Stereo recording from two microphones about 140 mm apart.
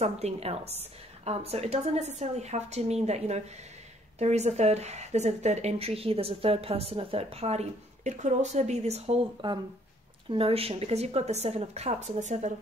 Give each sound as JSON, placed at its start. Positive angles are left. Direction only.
{"t": 0.0, "sound": "speech", "side_deg": -50}
{"t": 9.4, "sound": "speech", "side_deg": -35}